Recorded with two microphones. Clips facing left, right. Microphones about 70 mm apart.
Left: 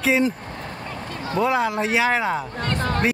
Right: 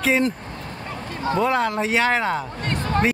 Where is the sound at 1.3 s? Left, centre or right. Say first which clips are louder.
Left 1 dB; centre.